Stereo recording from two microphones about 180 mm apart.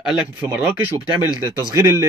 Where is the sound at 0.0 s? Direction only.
5° right (ahead or behind).